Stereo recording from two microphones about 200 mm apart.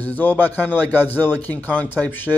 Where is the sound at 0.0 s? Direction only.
10° left (ahead or behind).